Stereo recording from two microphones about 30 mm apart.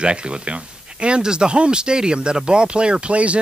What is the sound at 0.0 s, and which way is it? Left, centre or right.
Speech, right.